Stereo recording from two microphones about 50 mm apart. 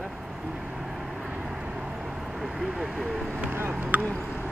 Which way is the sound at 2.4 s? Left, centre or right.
Centre.